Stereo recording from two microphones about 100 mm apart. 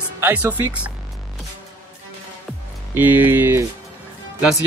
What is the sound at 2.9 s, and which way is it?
Speech, 20° right (ahead or behind).